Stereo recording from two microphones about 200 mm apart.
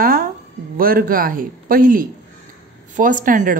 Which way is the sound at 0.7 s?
45° right (ahead or behind).